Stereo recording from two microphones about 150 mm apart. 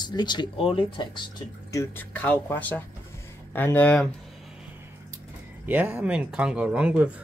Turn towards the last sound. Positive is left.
turn(degrees=-10)  # may be behind; listen again after turning